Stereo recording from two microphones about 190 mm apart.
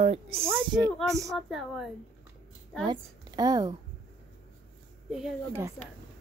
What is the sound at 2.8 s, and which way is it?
Speech, 20° right (ahead or behind).